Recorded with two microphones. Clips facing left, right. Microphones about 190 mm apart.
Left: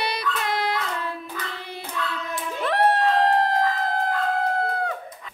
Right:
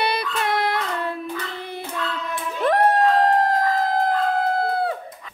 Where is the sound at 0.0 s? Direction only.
60° right (ahead or behind).